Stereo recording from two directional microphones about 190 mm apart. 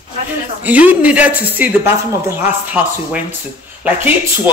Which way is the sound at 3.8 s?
10° right (ahead or behind).